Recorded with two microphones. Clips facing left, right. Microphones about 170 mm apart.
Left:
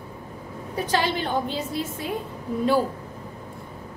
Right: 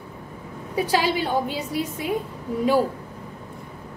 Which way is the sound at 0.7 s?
10° right (ahead or behind).